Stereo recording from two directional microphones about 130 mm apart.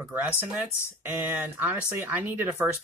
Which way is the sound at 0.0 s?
15° right (ahead or behind).